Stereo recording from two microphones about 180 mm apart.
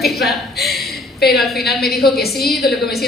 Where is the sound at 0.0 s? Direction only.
Centre (ahead or behind).